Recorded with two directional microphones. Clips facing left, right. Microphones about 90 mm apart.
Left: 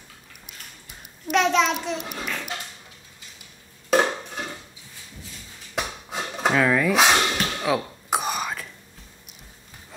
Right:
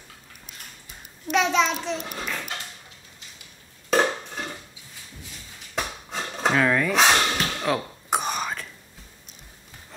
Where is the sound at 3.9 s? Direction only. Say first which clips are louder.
Left 1 dB; 5° left (ahead or behind).